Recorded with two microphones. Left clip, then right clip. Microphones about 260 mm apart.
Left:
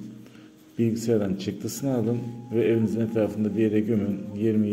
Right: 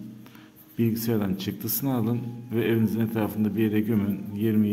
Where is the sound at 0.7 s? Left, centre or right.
Centre.